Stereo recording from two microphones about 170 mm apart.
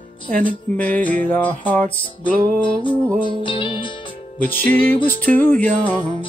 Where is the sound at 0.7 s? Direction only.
10° left (ahead or behind).